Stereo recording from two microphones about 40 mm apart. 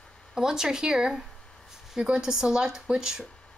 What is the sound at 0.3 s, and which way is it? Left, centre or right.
Speech, centre.